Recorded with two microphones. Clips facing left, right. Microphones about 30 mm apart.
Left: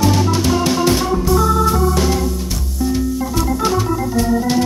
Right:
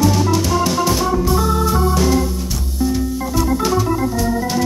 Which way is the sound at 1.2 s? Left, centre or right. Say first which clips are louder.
Left 2 dB; centre.